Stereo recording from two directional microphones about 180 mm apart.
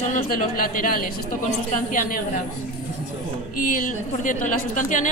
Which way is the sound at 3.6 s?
50° left (ahead or behind).